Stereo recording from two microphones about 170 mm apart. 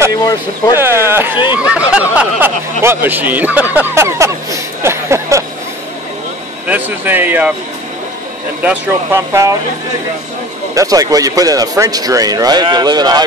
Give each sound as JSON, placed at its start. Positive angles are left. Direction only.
{"t": 0.1, "sound": "speech", "side_deg": 25}
{"t": 0.7, "sound": "speech", "side_deg": -15}
{"t": 1.3, "sound": "speech", "side_deg": 25}
{"t": 1.6, "sound": "speech", "side_deg": -5}
{"t": 3.7, "sound": "a sound", "side_deg": -15}
{"t": 6.7, "sound": "speech", "side_deg": -10}
{"t": 8.6, "sound": "speech", "side_deg": -15}
{"t": 10.7, "sound": "a man's voice", "side_deg": -20}